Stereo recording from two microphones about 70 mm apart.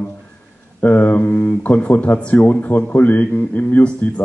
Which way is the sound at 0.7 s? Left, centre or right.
Left.